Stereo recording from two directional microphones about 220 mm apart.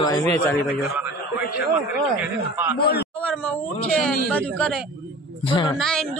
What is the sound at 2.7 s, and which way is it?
Speech, 45° left (ahead or behind).